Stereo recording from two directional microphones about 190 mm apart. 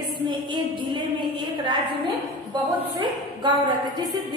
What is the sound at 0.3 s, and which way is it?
A woman's voice, 25° right (ahead or behind).